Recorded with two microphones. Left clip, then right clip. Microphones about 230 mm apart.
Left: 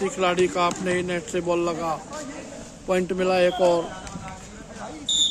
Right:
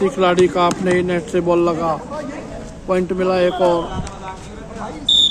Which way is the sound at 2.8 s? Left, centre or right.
Left.